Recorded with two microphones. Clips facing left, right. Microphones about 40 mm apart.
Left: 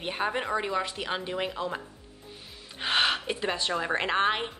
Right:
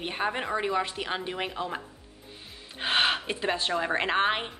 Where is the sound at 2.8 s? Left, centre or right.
Centre.